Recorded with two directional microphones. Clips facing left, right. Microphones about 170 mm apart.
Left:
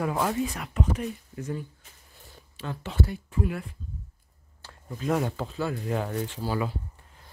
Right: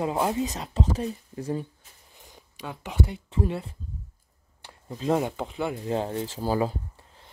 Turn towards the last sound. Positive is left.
turn(degrees=-35)  # may be behind; listen again after turning